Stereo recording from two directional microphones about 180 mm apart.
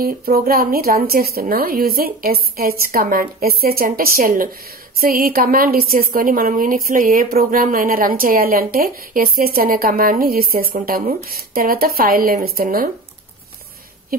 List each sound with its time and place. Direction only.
0.0 s a woman's voice: 55° right (ahead or behind)